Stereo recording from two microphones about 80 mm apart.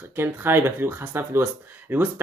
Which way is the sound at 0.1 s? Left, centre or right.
Right.